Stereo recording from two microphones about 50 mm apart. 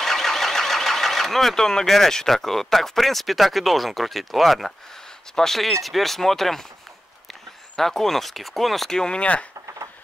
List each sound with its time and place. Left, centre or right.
0.0 s speech: centre
7.7 s speech: centre
8.9 s speech: centre